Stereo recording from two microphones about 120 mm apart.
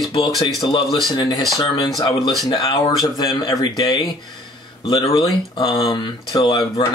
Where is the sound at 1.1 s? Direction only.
35° left (ahead or behind).